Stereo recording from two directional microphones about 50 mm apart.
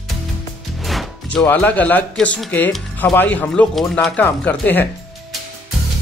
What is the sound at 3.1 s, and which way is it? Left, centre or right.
Speech, left.